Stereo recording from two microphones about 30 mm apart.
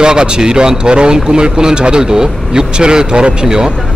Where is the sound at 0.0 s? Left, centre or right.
Right.